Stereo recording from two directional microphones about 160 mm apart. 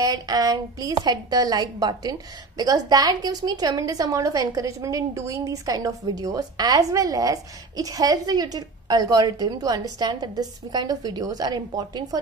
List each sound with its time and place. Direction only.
0.0 s a woman's voice: 25° right (ahead or behind)